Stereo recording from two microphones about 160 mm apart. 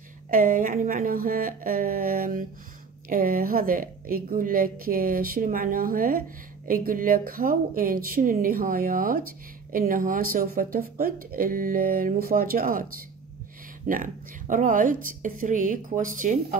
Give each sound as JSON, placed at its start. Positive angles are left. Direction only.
{"t": 0.3, "sound": "a woman's voice", "side_deg": -60}
{"t": 13.9, "sound": "a woman's voice", "side_deg": -50}